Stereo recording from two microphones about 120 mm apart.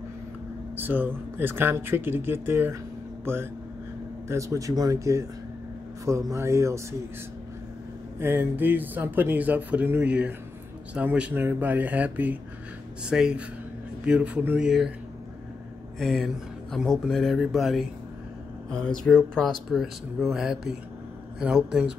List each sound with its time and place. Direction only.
0.7 s speech: 15° right (ahead or behind)
4.3 s speech: 25° right (ahead or behind)
8.2 s speech: 20° right (ahead or behind)
16.0 s speech: centre (ahead or behind)